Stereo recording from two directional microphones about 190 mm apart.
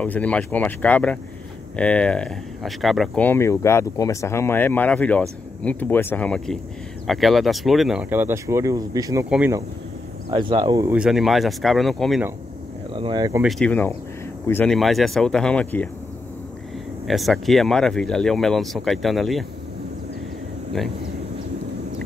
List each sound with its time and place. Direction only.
0.0 s speech: 5° left (ahead or behind)
3.3 s speech: 15° left (ahead or behind); by 9.6 s 10° right (ahead or behind)
10.3 s speech: 25° right (ahead or behind)
10.9 s speech: 5° right (ahead or behind)
12.9 s speech: 25° right (ahead or behind)
13.4 s speech: centre (ahead or behind)
17.1 s speech: centre (ahead or behind)